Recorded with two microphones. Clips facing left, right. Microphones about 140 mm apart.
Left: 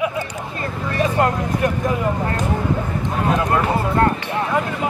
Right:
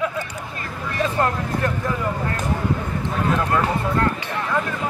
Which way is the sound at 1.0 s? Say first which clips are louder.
Left 3 dB; 15° left (ahead or behind).